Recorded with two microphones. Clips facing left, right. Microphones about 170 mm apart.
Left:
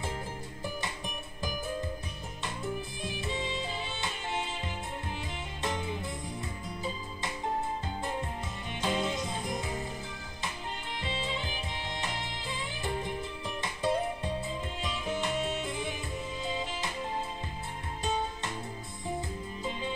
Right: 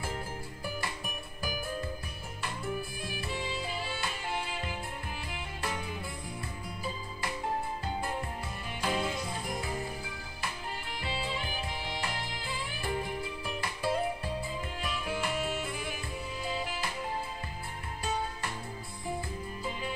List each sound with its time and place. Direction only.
0.7 s music: 20° left (ahead or behind)
8.8 s music: 20° left (ahead or behind)
11.0 s music: 20° left (ahead or behind)